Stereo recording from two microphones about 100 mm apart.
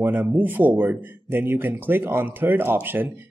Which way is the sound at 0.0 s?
20° right (ahead or behind).